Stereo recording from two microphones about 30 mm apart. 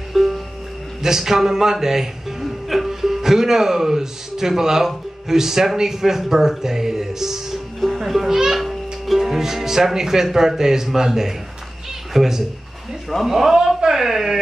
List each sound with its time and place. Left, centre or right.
0.1 s music: centre
1.0 s speech: centre